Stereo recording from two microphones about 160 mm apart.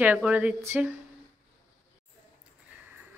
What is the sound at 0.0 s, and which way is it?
Cutlery, 10° right (ahead or behind).